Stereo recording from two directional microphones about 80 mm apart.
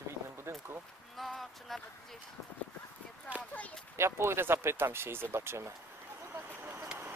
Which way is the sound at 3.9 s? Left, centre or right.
Right.